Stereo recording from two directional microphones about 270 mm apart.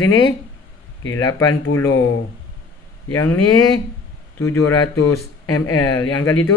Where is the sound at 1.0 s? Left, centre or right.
Left.